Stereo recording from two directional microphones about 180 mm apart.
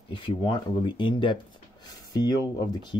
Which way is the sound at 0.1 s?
30° left (ahead or behind).